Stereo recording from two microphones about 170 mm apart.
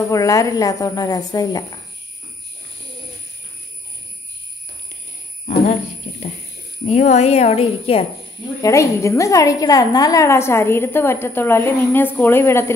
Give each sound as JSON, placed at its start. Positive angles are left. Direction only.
{"t": 0.1, "sound": "speech", "side_deg": 20}
{"t": 6.9, "sound": "speech", "side_deg": 40}
{"t": 8.6, "sound": "a woman's voice", "side_deg": 20}